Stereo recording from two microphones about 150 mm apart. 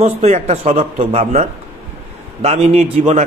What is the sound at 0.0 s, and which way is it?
A man's voice, 45° right (ahead or behind).